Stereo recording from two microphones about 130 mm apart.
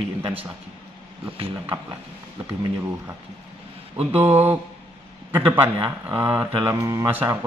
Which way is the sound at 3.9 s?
15° right (ahead or behind).